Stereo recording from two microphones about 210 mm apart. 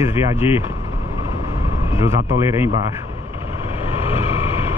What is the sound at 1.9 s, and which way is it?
Speech, 10° right (ahead or behind).